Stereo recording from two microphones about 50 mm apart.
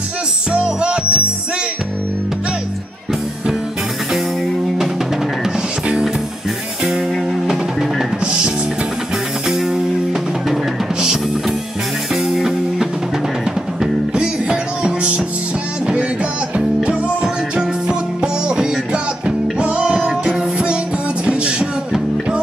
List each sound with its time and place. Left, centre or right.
0.5 s music: centre
7.4 s music: centre
9.5 s music: centre
10.5 s drum: centre
12.1 s music: centre
14.1 s music: centre
16.5 s music: centre